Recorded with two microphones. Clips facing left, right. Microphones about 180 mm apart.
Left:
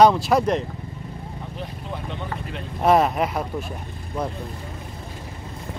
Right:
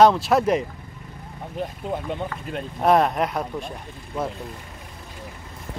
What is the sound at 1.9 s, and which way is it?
Speech, 45° right (ahead or behind).